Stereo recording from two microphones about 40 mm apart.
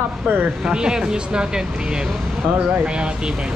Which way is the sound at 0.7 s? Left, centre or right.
Right.